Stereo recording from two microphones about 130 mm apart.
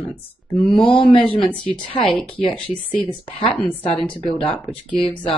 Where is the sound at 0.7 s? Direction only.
40° left (ahead or behind).